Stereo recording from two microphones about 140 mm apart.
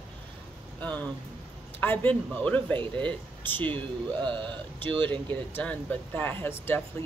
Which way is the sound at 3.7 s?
35° right (ahead or behind).